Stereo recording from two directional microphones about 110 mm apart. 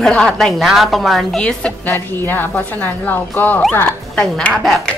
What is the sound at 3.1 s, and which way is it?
Speech, 15° left (ahead or behind).